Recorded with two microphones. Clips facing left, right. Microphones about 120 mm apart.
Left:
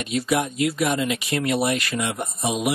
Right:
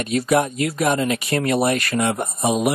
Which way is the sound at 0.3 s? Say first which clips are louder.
Right 3 dB; 50° right (ahead or behind).